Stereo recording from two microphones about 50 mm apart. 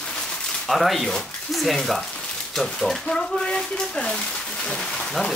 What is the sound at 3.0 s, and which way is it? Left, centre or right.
Speech, centre.